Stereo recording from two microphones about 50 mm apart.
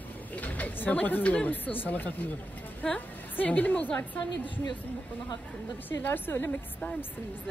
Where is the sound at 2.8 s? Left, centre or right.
Left.